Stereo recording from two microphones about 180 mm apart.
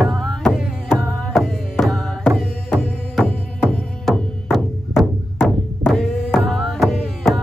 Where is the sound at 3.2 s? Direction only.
10° left (ahead or behind).